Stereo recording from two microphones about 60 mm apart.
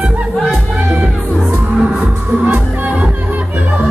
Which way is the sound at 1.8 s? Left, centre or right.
Centre.